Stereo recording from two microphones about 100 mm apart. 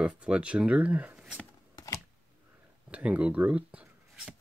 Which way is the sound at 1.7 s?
35° left (ahead or behind).